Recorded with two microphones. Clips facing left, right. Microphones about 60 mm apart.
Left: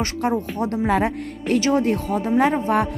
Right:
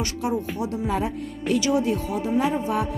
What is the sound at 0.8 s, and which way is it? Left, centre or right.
Speech, left.